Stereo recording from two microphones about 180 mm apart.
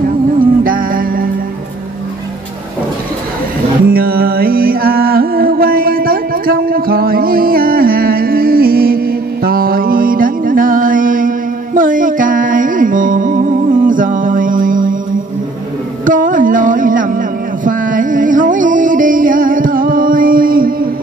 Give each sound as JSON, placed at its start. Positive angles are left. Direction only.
{"t": 0.7, "sound": "music", "side_deg": -50}
{"t": 3.9, "sound": "music", "side_deg": -55}
{"t": 16.1, "sound": "a sound", "side_deg": -50}
{"t": 17.6, "sound": "music", "side_deg": -50}